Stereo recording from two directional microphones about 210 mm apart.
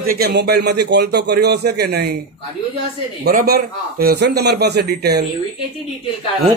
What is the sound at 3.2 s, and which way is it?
A man's voice, 45° right (ahead or behind).